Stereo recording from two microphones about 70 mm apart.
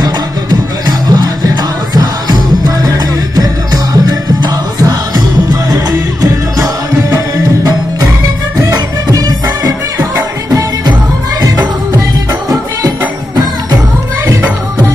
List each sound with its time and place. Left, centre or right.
0.8 s music: right
2.9 s music: right
6.6 s music: right